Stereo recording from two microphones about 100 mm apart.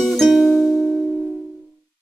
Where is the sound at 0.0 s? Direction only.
5° left (ahead or behind).